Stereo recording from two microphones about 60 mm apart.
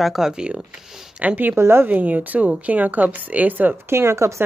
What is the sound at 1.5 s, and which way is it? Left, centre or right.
Speech, right.